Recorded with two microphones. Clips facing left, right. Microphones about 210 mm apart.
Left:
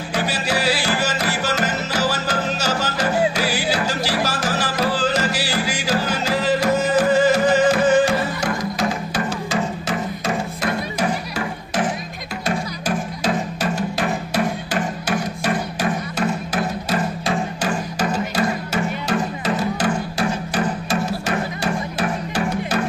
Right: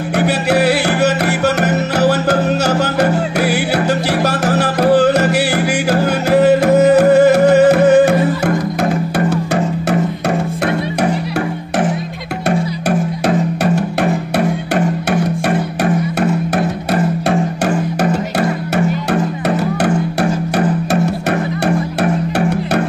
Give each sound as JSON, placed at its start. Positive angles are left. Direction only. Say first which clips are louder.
{"t": 0.2, "sound": "music", "louder": "right 9 dB", "side_deg": -60}
{"t": 12.4, "sound": "music", "louder": "right 7 dB", "side_deg": -65}
{"t": 15.0, "sound": "music", "louder": "right 6 dB", "side_deg": -65}
{"t": 19.0, "sound": "music", "louder": "right 6 dB", "side_deg": -65}